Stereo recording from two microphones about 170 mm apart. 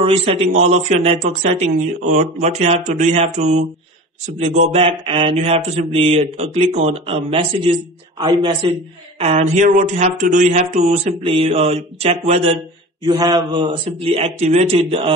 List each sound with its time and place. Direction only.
0.0 s speech: 35° right (ahead or behind)
9.2 s speech: 45° right (ahead or behind)
13.0 s speech: 25° right (ahead or behind)